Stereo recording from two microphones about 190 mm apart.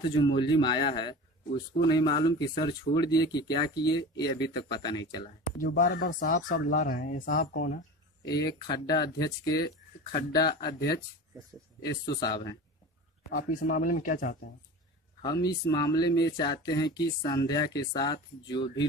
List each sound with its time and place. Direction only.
0.0 s speech: 25° left (ahead or behind)
5.8 s speech: 45° left (ahead or behind)
8.3 s speech: 20° left (ahead or behind)
10.6 s speech: 55° left (ahead or behind)
12.1 s speech: 20° left (ahead or behind)
13.3 s speech: 45° left (ahead or behind)
15.2 s speech: 20° left (ahead or behind)